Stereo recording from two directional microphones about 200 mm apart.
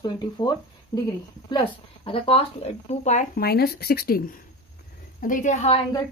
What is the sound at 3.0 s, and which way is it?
Speech, 40° left (ahead or behind).